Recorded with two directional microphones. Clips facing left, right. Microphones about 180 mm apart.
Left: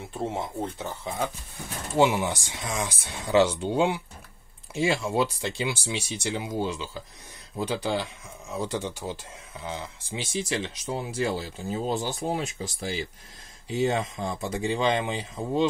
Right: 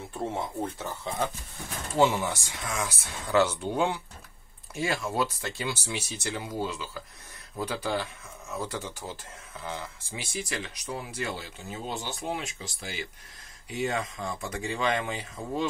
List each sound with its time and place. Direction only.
0.2 s speech: 15° left (ahead or behind); by 13.0 s 35° left (ahead or behind)
13.7 s speech: 25° left (ahead or behind)